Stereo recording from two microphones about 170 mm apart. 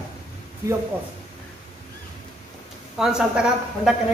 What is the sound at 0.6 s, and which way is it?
Speech, 15° right (ahead or behind).